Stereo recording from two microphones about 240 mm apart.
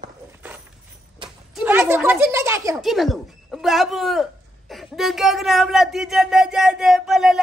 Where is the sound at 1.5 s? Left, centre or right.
Centre.